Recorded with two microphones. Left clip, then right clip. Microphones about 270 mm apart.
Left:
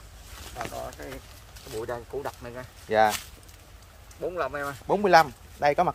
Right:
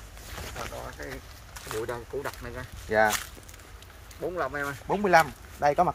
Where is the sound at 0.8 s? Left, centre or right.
Centre.